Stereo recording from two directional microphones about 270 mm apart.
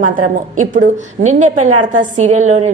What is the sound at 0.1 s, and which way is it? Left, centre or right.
A woman's voice, right.